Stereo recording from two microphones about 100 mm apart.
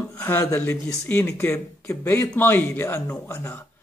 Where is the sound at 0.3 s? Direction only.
20° left (ahead or behind).